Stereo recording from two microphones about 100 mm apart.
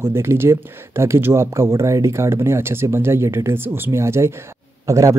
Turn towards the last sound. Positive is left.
turn(degrees=-30)  # may be behind; listen again after turning